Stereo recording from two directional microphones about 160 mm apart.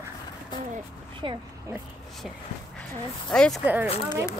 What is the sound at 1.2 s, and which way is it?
Speech, 30° right (ahead or behind).